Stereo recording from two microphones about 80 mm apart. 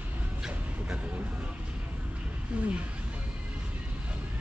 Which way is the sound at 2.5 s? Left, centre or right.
Centre.